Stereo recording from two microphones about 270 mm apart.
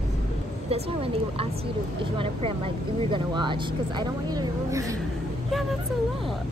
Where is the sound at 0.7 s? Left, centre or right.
Right.